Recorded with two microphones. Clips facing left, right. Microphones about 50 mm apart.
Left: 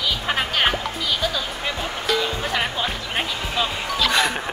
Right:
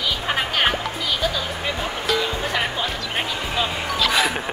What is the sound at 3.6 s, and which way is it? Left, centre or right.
Speech, centre.